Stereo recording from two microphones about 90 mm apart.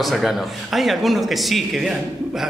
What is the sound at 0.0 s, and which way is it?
A man's voice, centre (ahead or behind).